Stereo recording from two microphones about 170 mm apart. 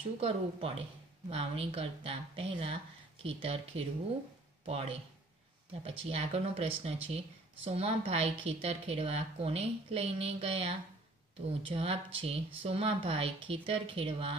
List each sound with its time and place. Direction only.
0.2 s speech: 35° right (ahead or behind)